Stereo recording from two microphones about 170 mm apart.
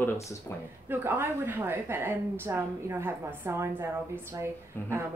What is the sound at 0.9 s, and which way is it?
A woman's voice, 15° right (ahead or behind).